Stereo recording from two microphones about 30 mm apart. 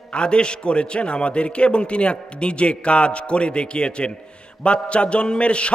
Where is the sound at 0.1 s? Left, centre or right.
Left.